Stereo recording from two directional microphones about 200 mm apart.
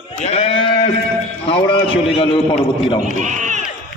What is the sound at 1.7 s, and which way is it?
A man's voice, 25° left (ahead or behind).